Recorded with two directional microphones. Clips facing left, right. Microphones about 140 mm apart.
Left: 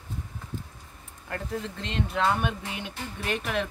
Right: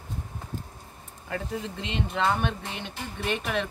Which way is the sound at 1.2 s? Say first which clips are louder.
Right 1 dB; 5° right (ahead or behind).